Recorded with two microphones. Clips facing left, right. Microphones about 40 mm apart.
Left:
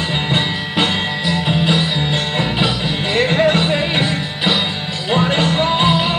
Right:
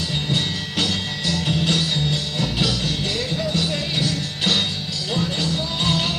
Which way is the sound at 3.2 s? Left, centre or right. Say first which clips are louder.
Left 10 dB; left.